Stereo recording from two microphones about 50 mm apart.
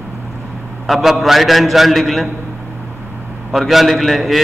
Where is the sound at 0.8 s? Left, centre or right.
Centre.